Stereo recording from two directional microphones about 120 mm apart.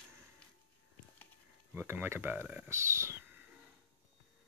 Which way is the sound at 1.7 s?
20° right (ahead or behind).